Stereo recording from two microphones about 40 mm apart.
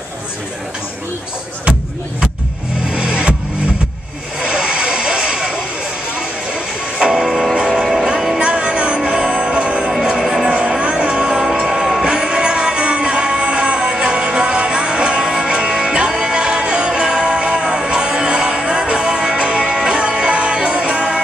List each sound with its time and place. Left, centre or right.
2.9 s music: right
4.4 s vehicle: right
6.1 s music: right
7.2 s music: centre
7.5 s music: centre
7.8 s music: centre
8.4 s music: right
10.2 s music: centre
10.8 s music: right
11.4 s music: centre